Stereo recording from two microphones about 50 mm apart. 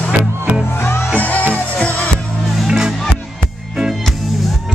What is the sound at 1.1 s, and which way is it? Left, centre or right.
Music, left.